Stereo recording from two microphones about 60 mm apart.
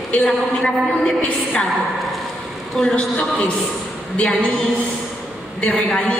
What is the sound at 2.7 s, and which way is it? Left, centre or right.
A woman's voice, centre.